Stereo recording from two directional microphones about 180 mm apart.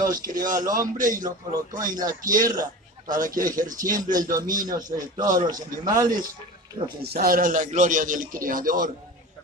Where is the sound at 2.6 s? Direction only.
50° right (ahead or behind).